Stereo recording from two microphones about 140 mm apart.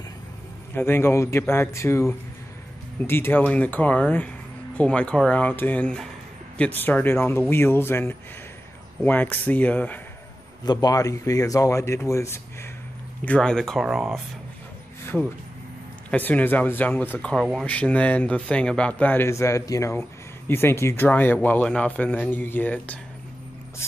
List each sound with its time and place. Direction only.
0.7 s speech: 15° left (ahead or behind)
10.6 s speech: 30° left (ahead or behind)
13.2 s speech: 10° left (ahead or behind)
16.1 s speech: 10° left (ahead or behind)